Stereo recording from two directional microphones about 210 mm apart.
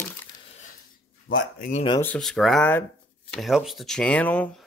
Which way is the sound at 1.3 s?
45° left (ahead or behind).